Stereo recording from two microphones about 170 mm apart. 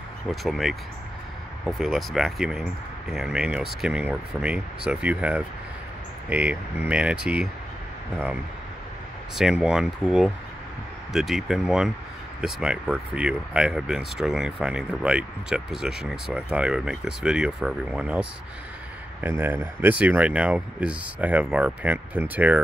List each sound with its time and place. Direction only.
0.3 s speech: centre (ahead or behind)
9.3 s speech: 5° right (ahead or behind)
19.2 s speech: 10° right (ahead or behind)